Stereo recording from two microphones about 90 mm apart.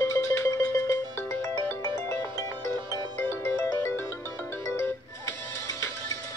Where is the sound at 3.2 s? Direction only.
25° left (ahead or behind).